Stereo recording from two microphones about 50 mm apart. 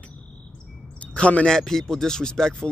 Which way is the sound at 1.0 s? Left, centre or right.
Left.